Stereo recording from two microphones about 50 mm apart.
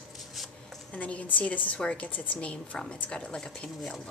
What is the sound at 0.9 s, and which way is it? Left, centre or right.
Speech, left.